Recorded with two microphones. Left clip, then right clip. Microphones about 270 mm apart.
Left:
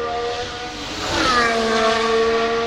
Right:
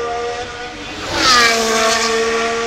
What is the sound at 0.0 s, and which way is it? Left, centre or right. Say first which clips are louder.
Steam whistle: right 2 dB; right.